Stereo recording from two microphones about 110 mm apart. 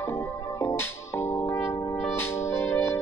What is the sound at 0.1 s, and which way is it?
Music, 20° left (ahead or behind).